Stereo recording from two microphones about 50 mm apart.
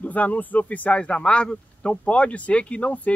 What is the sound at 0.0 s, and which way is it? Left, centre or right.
Speech, left.